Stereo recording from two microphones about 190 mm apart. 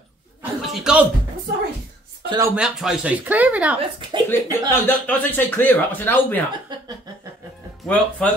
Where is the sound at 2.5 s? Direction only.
5° right (ahead or behind).